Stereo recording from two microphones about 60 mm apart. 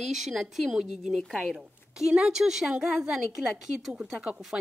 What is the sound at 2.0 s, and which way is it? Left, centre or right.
A woman's voice, centre.